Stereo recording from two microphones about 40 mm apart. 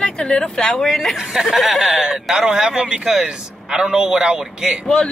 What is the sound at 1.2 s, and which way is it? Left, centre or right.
Speech, centre.